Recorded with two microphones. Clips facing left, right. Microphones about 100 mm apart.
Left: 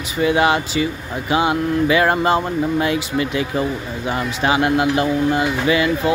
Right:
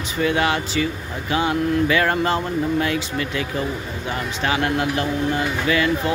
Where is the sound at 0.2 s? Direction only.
15° left (ahead or behind).